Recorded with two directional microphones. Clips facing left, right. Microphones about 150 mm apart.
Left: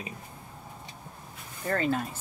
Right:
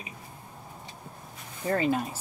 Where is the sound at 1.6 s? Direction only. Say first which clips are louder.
Right 2 dB; 10° right (ahead or behind).